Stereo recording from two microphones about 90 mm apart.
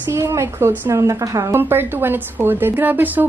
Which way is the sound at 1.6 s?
25° right (ahead or behind).